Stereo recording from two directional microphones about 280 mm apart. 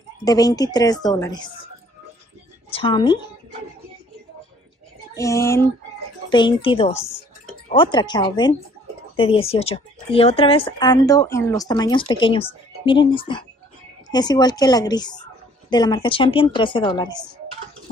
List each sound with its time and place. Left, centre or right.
0.2 s a woman's voice: centre
2.7 s a woman's voice: centre
5.1 s a woman's voice: centre